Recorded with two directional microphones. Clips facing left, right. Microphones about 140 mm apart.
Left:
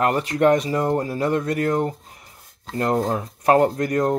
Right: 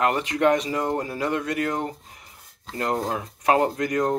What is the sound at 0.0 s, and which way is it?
Speech, 35° left (ahead or behind).